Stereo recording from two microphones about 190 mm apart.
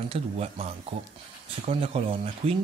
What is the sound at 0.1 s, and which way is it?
Speech, 35° right (ahead or behind).